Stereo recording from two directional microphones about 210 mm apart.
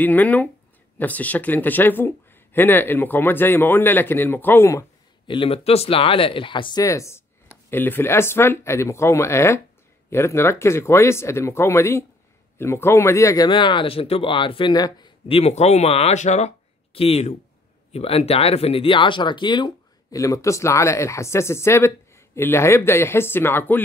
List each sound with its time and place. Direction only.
0.0 s speech: 10° left (ahead or behind)